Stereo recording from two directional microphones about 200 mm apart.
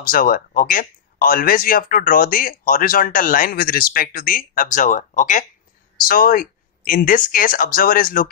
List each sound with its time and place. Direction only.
0.0 s speech: 45° left (ahead or behind)